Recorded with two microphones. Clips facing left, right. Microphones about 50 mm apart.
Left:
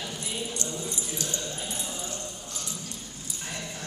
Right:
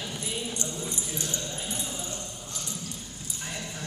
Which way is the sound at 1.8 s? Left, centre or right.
Centre.